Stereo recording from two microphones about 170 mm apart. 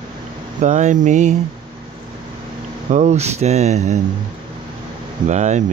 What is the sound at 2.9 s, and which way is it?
Speech, 45° right (ahead or behind).